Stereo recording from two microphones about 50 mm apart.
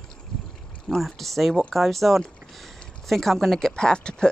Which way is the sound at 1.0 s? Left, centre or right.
Centre.